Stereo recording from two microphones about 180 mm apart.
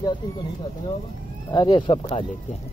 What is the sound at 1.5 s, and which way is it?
Speech, 25° left (ahead or behind).